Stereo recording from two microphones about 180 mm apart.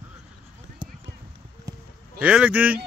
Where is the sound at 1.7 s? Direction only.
20° right (ahead or behind).